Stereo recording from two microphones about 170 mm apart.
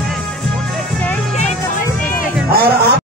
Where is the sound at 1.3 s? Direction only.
45° left (ahead or behind).